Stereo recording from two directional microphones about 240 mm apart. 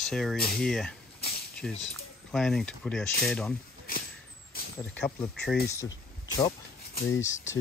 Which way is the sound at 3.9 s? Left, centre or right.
Left.